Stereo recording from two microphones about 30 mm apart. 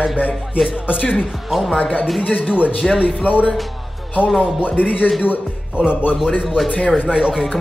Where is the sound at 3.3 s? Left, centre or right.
Left.